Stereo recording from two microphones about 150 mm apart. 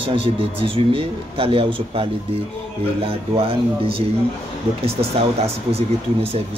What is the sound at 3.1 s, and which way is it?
Speech, 40° right (ahead or behind).